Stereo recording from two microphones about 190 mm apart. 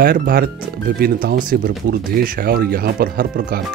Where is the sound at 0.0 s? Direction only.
50° right (ahead or behind).